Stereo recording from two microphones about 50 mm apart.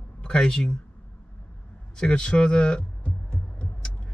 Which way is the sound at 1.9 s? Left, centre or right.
Centre.